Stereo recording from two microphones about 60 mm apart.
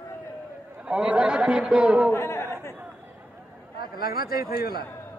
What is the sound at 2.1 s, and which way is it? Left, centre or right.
Chatter, left.